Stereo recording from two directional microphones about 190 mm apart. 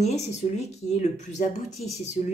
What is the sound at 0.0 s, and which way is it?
Speech, 35° left (ahead or behind).